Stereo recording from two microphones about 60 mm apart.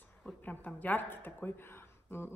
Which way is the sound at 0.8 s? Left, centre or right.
Left.